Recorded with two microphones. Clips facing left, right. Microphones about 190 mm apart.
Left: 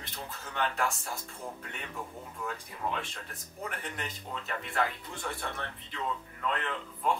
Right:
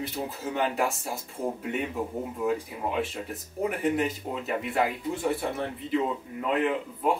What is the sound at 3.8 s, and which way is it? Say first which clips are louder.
Speech: right 14 dB; 5° right (ahead or behind).